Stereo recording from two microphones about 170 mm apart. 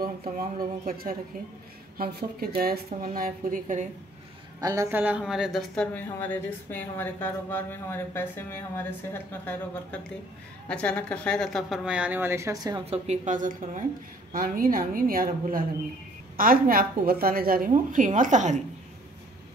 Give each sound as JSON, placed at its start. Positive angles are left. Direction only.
{"t": 0.0, "sound": "a woman's voice", "side_deg": -60}
{"t": 4.6, "sound": "a woman's voice", "side_deg": -20}
{"t": 12.9, "sound": "a woman's voice", "side_deg": -40}